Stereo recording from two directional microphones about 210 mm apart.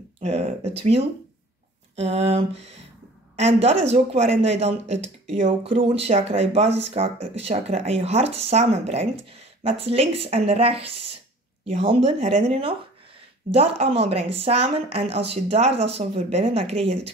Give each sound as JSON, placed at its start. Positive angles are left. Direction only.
{"t": 0.2, "sound": "speech", "side_deg": -30}